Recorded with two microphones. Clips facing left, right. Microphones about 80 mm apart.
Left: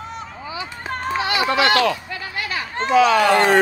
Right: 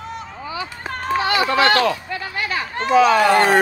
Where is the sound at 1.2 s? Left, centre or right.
Right.